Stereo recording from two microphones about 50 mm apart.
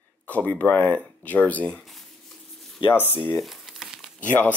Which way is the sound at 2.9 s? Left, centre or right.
Left.